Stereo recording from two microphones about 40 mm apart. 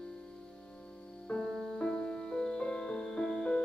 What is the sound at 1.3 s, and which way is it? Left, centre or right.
Music, left.